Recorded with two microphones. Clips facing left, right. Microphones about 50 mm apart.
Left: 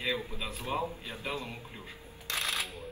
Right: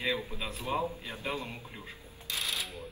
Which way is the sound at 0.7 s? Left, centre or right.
Centre.